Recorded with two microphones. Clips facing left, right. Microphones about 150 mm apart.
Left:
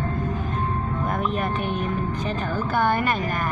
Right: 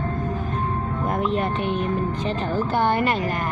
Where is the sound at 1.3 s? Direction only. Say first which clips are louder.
Right 2 dB; 20° right (ahead or behind).